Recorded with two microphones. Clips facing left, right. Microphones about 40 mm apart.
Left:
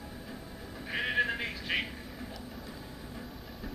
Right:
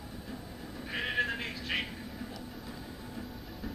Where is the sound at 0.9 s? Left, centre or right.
Centre.